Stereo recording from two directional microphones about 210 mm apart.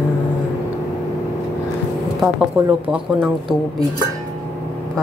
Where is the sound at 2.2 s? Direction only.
5° right (ahead or behind).